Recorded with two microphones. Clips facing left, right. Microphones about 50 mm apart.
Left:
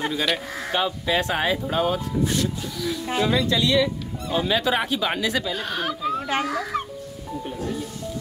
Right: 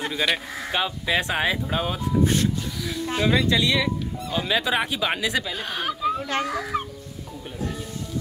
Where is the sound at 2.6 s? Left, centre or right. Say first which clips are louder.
Left 3 dB; centre.